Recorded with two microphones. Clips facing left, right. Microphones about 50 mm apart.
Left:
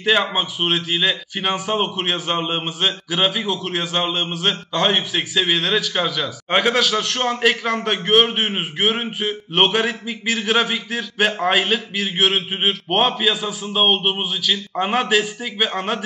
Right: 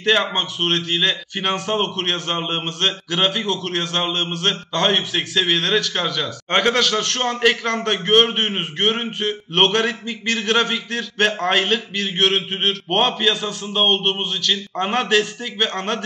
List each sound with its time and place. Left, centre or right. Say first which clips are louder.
0.0 s a man's voice: even; centre